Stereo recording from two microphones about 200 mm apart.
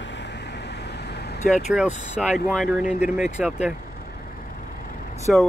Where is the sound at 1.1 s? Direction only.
55° left (ahead or behind).